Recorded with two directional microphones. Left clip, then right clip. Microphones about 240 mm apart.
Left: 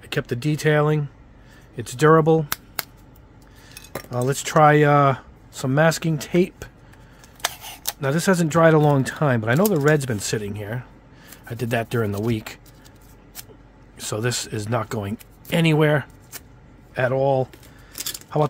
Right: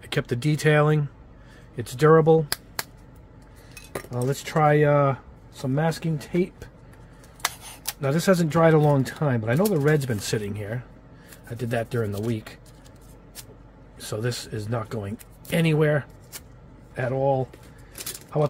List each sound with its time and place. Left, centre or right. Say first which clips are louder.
0.0 s speech: left 1 dB; centre
3.7 s speech: left 4 dB; centre
11.4 s speech: left 3 dB; left
13.9 s speech: left 4 dB; left